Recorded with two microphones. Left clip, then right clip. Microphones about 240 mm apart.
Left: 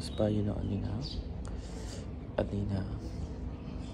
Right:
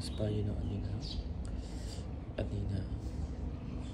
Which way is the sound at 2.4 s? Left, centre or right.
Left.